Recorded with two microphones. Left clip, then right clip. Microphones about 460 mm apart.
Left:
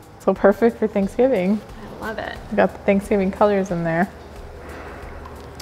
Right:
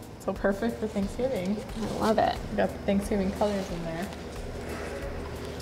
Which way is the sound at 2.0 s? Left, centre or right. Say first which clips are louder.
Right 4 dB; right.